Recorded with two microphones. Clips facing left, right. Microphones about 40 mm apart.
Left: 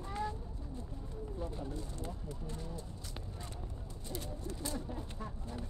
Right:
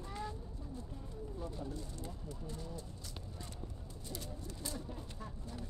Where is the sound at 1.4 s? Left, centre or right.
Left.